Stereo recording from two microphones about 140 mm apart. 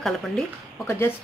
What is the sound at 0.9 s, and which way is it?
Speech, 15° left (ahead or behind).